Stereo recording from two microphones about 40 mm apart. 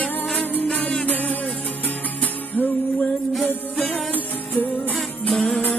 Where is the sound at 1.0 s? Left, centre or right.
Left.